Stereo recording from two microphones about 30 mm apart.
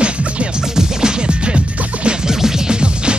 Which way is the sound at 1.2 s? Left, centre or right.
Right.